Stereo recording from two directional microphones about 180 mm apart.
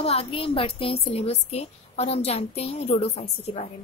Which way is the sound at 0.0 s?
35° left (ahead or behind).